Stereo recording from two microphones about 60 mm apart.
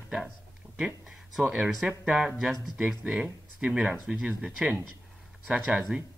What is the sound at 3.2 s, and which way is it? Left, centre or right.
Speech, centre.